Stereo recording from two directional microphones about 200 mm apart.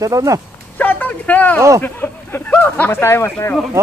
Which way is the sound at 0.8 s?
10° left (ahead or behind).